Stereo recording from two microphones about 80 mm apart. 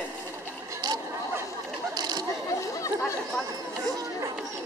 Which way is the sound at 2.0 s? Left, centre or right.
Right.